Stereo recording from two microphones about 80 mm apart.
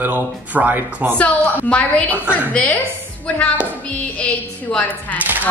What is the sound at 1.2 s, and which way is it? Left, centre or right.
A woman's voice, centre.